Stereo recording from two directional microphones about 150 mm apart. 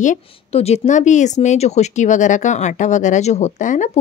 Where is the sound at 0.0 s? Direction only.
50° left (ahead or behind).